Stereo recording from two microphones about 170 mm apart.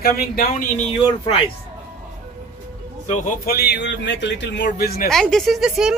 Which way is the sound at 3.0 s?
45° left (ahead or behind).